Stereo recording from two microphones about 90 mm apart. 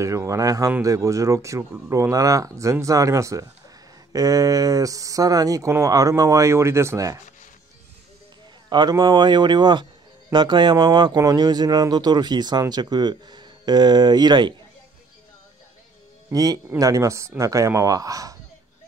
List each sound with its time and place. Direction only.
0.0 s speech: 35° right (ahead or behind)
8.6 s a sound: 55° right (ahead or behind)
9.0 s speech: 55° right (ahead or behind)
11.1 s speech: 45° right (ahead or behind)
16.3 s speech: 40° right (ahead or behind)